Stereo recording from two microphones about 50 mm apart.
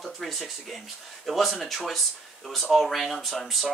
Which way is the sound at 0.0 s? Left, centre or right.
Centre.